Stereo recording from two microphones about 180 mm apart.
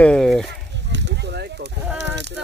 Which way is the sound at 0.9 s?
75° right (ahead or behind).